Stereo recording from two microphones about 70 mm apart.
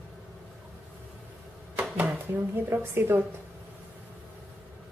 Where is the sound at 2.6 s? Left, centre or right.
Right.